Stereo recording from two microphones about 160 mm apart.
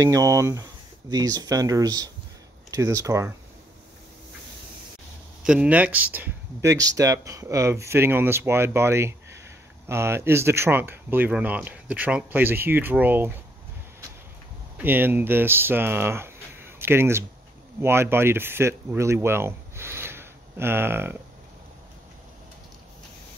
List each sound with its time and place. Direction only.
0.0 s speech: 20° right (ahead or behind)
5.4 s speech: 5° right (ahead or behind)
14.8 s speech: 15° right (ahead or behind)